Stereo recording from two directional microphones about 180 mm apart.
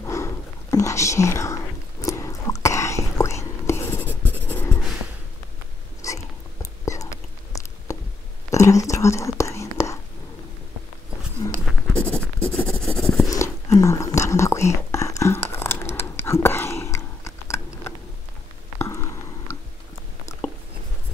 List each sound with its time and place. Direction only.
0.0 s whispering: 15° left (ahead or behind)
6.0 s a sound: 15° left (ahead or behind)
8.5 s whispering: 15° left (ahead or behind)
11.4 s writing: 20° left (ahead or behind)
12.4 s writing: 5° left (ahead or behind)
13.3 s whispering: 15° left (ahead or behind)
18.8 s a sound: 15° left (ahead or behind)